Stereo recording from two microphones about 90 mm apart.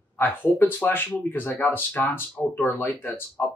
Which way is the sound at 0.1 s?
25° left (ahead or behind).